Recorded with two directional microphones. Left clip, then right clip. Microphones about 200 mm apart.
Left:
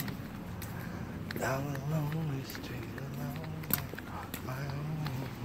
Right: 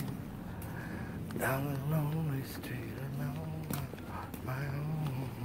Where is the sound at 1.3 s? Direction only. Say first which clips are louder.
Even; 20° right (ahead or behind).